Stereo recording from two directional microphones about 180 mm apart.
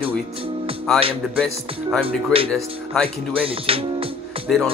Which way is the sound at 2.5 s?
5° left (ahead or behind).